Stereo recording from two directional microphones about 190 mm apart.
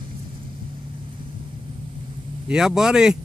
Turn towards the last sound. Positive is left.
turn(degrees=-5)  # may be behind; listen again after turning